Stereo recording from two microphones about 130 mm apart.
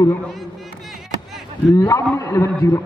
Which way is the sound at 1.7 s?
25° left (ahead or behind).